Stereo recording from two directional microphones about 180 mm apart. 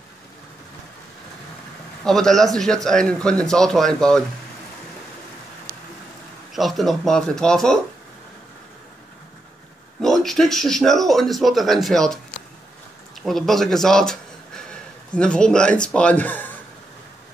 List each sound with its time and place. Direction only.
2.0 s speech: centre (ahead or behind)
6.5 s speech: centre (ahead or behind)
10.0 s speech: centre (ahead or behind)